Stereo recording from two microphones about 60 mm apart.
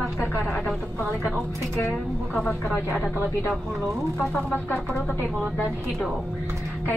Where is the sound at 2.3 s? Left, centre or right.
Centre.